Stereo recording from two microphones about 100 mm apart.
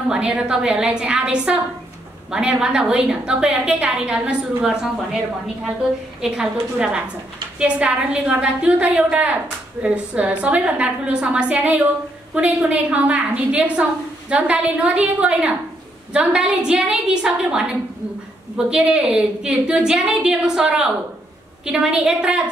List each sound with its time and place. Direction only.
0.1 s a woman's voice: 10° right (ahead or behind)
6.3 s a woman's voice: 10° right (ahead or behind)
18.7 s a woman's voice: 10° right (ahead or behind)